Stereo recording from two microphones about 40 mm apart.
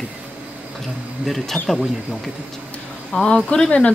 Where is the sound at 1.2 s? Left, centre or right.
Centre.